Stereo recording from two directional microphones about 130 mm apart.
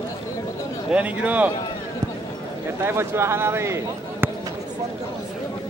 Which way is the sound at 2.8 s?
20° right (ahead or behind).